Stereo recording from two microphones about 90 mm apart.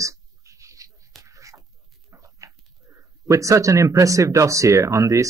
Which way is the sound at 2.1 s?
35° right (ahead or behind).